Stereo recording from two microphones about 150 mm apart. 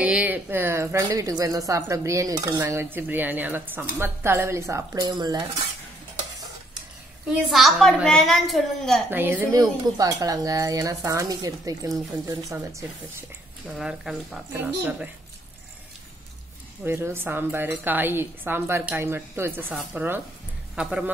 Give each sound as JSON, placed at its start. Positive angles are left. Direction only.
{"t": 0.0, "sound": "speech", "side_deg": -10}
{"t": 7.4, "sound": "a woman's voice", "side_deg": 0}
{"t": 9.1, "sound": "speech", "side_deg": -15}
{"t": 9.5, "sound": "speech", "side_deg": -25}
{"t": 13.7, "sound": "a woman's voice", "side_deg": -5}
{"t": 14.5, "sound": "speech", "side_deg": -10}
{"t": 16.8, "sound": "a man's voice", "side_deg": -15}